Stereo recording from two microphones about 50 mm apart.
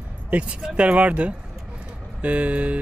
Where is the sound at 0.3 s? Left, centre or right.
Right.